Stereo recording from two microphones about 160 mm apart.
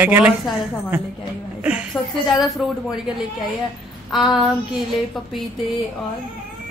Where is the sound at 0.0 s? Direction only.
10° right (ahead or behind).